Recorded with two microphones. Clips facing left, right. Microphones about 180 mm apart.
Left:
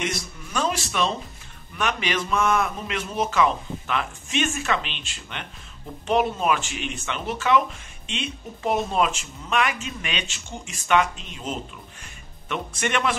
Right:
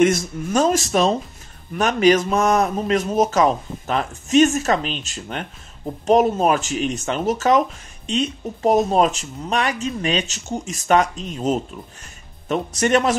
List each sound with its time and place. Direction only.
0.0 s a man's voice: 45° right (ahead or behind)